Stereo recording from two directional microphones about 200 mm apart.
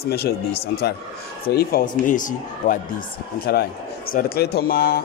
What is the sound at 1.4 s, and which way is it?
A man's voice, 50° left (ahead or behind).